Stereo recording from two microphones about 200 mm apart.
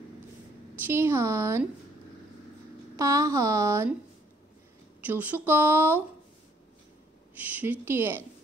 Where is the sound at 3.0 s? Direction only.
15° right (ahead or behind).